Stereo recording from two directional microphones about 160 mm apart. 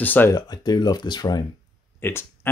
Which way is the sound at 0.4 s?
25° left (ahead or behind).